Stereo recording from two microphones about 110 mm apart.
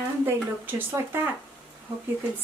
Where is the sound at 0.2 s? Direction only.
20° right (ahead or behind).